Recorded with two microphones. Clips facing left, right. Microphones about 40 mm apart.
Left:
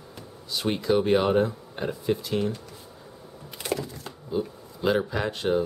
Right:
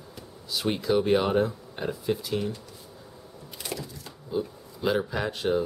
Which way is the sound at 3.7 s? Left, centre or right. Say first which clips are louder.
Left 7 dB; left.